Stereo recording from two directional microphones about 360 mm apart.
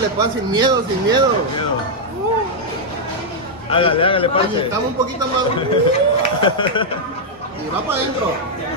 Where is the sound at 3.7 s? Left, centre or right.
Centre.